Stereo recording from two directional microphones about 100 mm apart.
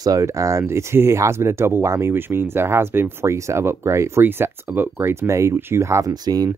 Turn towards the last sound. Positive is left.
turn(degrees=-40)  # may be behind; listen again after turning